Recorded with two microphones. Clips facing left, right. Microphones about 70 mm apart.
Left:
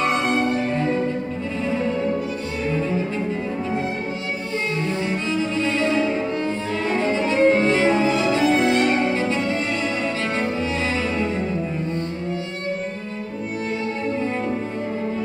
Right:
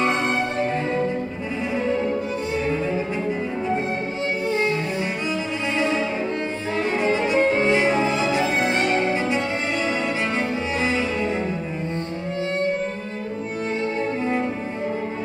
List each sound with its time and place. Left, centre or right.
5.3 s cello: centre
6.8 s music: centre